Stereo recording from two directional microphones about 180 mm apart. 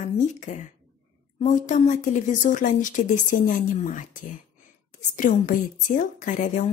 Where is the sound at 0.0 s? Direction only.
45° left (ahead or behind).